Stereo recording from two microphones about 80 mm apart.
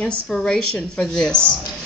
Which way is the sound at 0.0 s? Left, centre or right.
Centre.